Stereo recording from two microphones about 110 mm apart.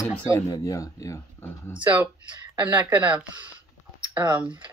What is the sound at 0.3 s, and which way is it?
Speech, 30° left (ahead or behind).